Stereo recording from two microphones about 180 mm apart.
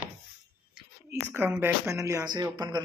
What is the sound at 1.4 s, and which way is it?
Speech, 10° right (ahead or behind).